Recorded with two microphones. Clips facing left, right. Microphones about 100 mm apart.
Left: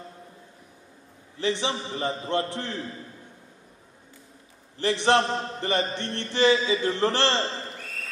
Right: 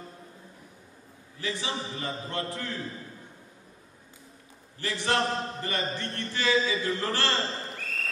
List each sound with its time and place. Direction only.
1.4 s a man's voice: 30° left (ahead or behind)
4.7 s a man's voice: 30° left (ahead or behind)